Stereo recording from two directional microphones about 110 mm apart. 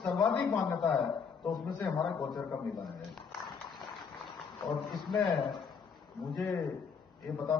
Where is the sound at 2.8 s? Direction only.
Centre (ahead or behind).